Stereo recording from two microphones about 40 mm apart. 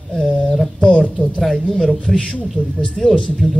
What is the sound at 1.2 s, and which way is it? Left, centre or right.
Speech, centre.